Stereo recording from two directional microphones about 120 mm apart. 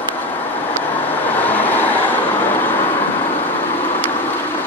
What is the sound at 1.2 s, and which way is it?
Vehicle, 15° left (ahead or behind).